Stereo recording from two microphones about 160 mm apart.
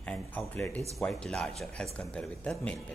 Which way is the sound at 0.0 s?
5° left (ahead or behind).